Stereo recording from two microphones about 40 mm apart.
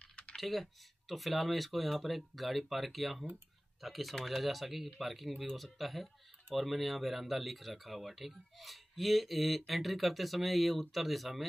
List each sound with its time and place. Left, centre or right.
0.4 s speech: centre